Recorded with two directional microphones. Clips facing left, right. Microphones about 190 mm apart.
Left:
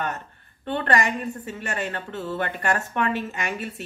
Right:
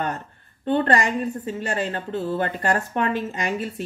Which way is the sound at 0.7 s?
30° right (ahead or behind).